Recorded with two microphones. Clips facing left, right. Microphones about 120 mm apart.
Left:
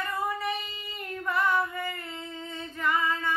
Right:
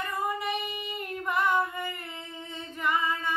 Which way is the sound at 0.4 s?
15° right (ahead or behind).